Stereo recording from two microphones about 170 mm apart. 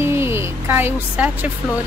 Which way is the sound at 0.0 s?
15° right (ahead or behind).